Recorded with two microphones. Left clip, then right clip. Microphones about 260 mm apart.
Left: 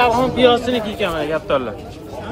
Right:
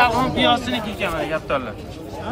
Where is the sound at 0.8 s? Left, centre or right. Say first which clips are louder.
Left 3 dB; left.